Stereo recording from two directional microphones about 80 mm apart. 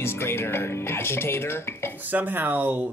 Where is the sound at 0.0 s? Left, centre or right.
Left.